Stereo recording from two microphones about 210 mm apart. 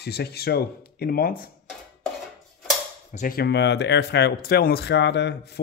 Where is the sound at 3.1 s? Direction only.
40° left (ahead or behind).